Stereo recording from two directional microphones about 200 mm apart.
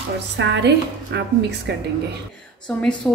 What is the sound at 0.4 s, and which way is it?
A woman's voice, 60° right (ahead or behind).